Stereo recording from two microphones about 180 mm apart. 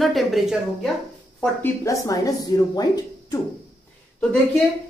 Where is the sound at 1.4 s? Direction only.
15° left (ahead or behind).